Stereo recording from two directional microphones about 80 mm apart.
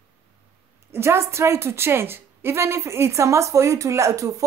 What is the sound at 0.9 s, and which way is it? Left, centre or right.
A woman's voice, right.